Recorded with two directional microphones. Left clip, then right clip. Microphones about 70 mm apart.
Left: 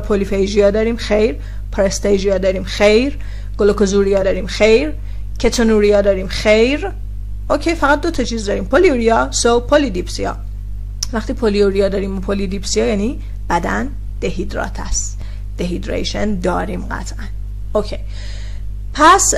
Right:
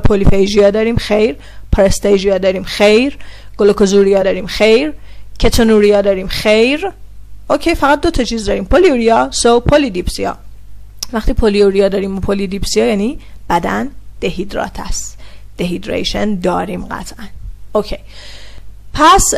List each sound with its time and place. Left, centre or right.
0.1 s a woman's voice: right